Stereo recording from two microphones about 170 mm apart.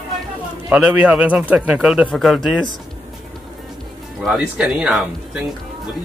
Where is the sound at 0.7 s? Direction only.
5° right (ahead or behind).